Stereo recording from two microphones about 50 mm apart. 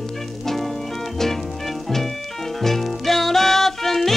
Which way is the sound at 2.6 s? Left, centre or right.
Centre.